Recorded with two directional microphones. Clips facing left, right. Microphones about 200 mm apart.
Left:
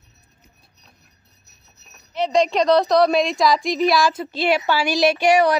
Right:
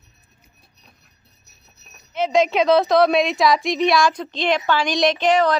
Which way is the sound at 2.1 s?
Centre (ahead or behind).